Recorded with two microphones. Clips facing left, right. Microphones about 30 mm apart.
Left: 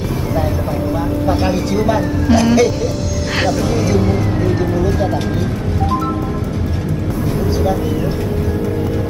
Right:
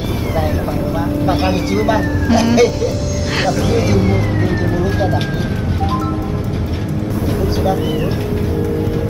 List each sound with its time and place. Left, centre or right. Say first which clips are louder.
1.3 s speech: even; right
1.7 s speech: even; centre
3.7 s speech: right 1 dB; right